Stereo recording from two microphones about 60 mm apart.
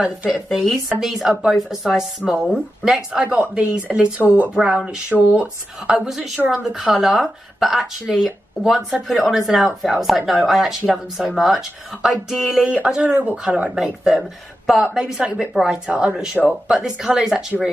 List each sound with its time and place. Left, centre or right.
0.3 s speech: centre
3.2 s speech: centre
5.1 s speech: right
5.9 s speech: centre
14.7 s speech: centre
15.2 s speech: centre
15.5 s speech: centre
15.9 s speech: centre